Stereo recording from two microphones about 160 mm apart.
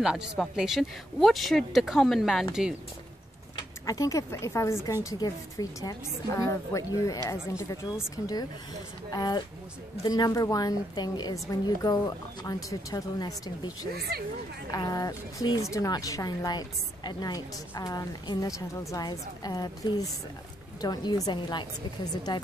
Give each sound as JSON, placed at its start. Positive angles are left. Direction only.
{"t": 0.4, "sound": "speech", "side_deg": -5}
{"t": 3.5, "sound": "speech", "side_deg": 20}
{"t": 14.7, "sound": "speech", "side_deg": 25}